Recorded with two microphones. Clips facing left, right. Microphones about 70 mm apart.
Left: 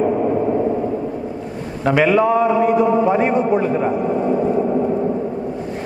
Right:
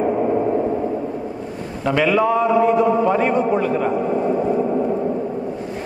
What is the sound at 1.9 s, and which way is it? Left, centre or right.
Speech, centre.